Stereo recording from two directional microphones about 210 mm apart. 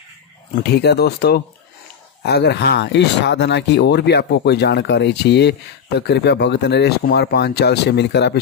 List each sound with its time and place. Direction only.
0.6 s speech: 50° left (ahead or behind)